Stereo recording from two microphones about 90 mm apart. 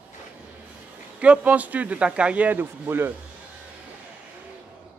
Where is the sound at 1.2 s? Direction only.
15° right (ahead or behind).